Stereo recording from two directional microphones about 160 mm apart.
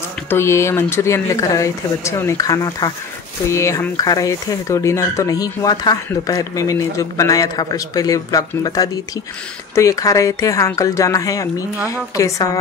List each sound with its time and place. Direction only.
0.3 s speech: 15° left (ahead or behind)